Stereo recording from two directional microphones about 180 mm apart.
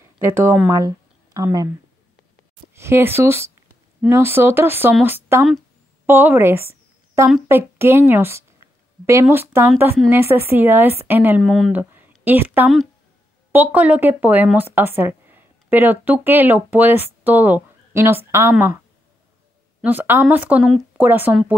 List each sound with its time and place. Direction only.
0.2 s speech: 15° right (ahead or behind)
2.7 s a woman's voice: 15° right (ahead or behind)
19.8 s speech: 10° right (ahead or behind)